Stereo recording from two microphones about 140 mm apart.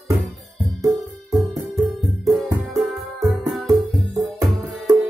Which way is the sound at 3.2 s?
Centre (ahead or behind).